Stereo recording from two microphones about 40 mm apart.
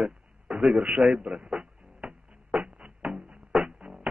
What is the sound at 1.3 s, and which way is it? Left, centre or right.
Music, right.